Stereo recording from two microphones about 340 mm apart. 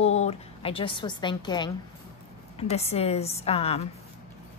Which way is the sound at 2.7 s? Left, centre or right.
Centre.